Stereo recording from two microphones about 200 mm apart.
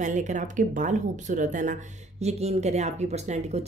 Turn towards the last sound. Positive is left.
turn(degrees=-35)  # may be behind; listen again after turning